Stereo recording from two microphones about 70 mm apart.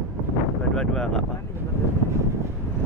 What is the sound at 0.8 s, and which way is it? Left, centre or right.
Speech, centre.